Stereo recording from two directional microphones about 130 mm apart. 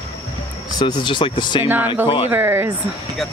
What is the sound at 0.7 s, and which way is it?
Speech, 35° left (ahead or behind).